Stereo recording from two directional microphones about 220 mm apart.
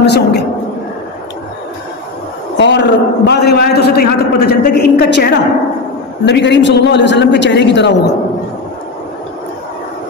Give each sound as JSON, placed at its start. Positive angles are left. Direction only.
{"t": 0.0, "sound": "a woman's voice", "side_deg": 50}
{"t": 2.5, "sound": "a man's voice", "side_deg": 55}